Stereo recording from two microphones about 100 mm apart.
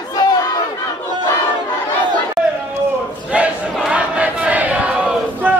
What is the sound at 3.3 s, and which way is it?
Battle cry, 10° right (ahead or behind).